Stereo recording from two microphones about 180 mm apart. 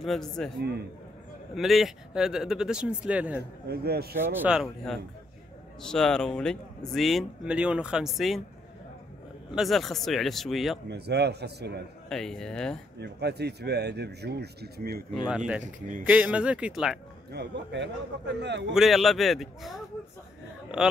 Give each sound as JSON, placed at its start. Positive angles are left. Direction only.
{"t": 0.0, "sound": "speech", "side_deg": 0}
{"t": 1.5, "sound": "speech", "side_deg": 0}
{"t": 3.6, "sound": "speech", "side_deg": -60}
{"t": 4.2, "sound": "speech", "side_deg": -10}
{"t": 9.6, "sound": "speech", "side_deg": 0}
{"t": 10.9, "sound": "speech", "side_deg": -65}
{"t": 12.1, "sound": "speech", "side_deg": 5}
{"t": 13.0, "sound": "speech", "side_deg": -65}
{"t": 15.2, "sound": "speech", "side_deg": -5}
{"t": 17.3, "sound": "a man's voice", "side_deg": -70}
{"t": 18.7, "sound": "speech", "side_deg": 0}